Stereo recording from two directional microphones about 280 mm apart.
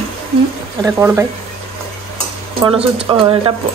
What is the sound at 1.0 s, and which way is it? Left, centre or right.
Speech, centre.